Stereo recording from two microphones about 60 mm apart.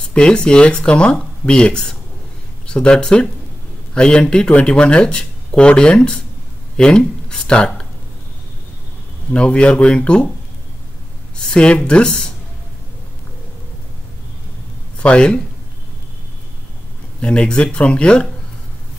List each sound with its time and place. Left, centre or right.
0.1 s speech: centre
9.3 s speech: centre
11.5 s speech: centre
15.0 s speech: centre
17.2 s speech: centre